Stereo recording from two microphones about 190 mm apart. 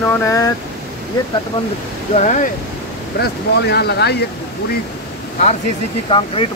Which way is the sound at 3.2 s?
60° left (ahead or behind).